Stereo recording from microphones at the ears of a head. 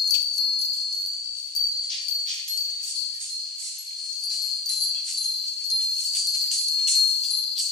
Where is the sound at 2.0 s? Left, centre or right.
Left.